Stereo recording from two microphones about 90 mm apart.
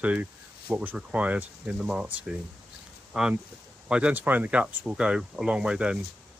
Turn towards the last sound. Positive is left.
turn(degrees=-10)  # may be behind; listen again after turning